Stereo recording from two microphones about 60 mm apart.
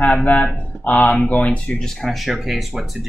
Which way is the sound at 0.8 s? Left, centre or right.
Left.